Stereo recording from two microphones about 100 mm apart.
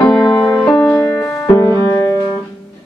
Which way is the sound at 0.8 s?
25° left (ahead or behind).